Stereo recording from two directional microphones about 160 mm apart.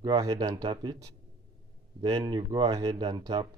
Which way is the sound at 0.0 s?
25° right (ahead or behind).